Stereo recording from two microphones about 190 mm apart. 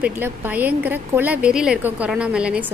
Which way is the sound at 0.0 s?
10° right (ahead or behind).